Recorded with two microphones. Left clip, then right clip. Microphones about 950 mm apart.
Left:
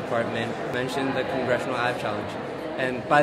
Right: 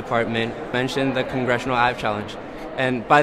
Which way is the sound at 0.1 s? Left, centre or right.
Right.